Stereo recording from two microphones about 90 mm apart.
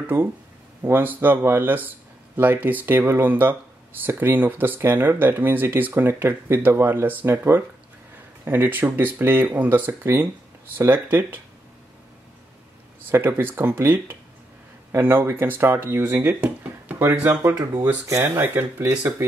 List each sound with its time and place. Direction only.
0.0 s speech: 25° right (ahead or behind)
13.1 s speech: 25° right (ahead or behind)